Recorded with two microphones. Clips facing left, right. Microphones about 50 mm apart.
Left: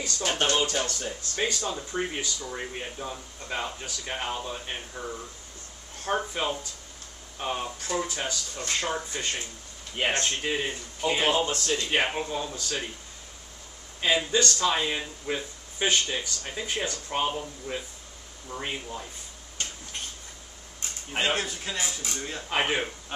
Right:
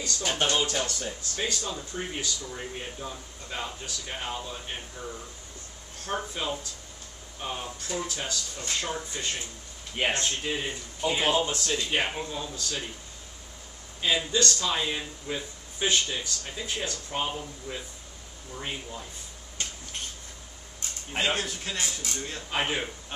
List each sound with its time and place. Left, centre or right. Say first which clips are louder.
0.0 s speech: left 1 dB; left
14.0 s speech: left 2 dB; left
17.3 s speech: left 3 dB; centre
21.1 s speech: left 1 dB; centre